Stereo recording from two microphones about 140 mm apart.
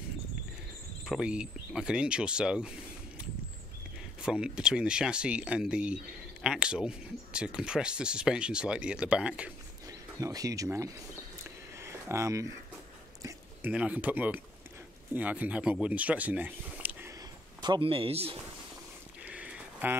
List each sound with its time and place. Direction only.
1.0 s speech: 5° right (ahead or behind)
4.2 s speech: 5° right (ahead or behind)
9.8 s speech: 25° right (ahead or behind)
11.8 s a sound: 20° right (ahead or behind)
13.2 s speech: 10° right (ahead or behind)
17.6 s a man's voice: 35° right (ahead or behind)
19.2 s a sound: 10° right (ahead or behind)